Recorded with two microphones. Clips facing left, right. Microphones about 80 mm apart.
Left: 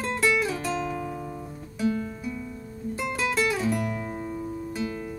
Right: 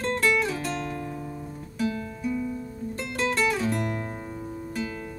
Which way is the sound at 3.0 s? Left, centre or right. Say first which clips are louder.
Even; centre.